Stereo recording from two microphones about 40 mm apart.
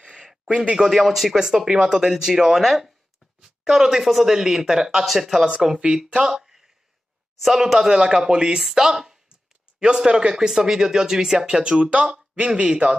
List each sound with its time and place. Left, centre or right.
0.0 s a sound: centre
0.6 s speech: centre
0.8 s speech: centre
1.7 s speech: centre
4.0 s speech: centre
5.0 s speech: centre
6.2 s a sound: centre
7.5 s speech: centre; by 12.9 s right